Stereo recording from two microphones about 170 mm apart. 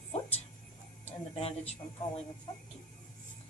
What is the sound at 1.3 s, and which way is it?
Speech, 35° left (ahead or behind).